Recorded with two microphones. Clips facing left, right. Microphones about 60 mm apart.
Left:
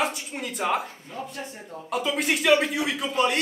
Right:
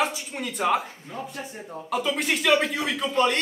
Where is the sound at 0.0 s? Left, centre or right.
Centre.